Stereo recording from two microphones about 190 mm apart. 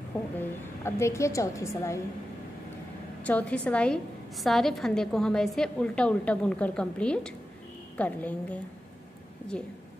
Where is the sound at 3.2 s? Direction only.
5° left (ahead or behind).